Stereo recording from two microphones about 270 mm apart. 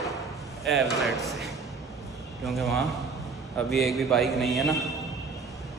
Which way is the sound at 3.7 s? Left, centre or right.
Centre.